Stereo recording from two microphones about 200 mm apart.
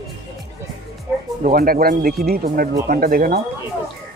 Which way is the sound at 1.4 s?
45° right (ahead or behind).